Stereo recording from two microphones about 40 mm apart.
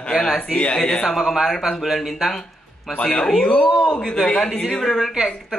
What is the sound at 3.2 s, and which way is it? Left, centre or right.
Speech, left.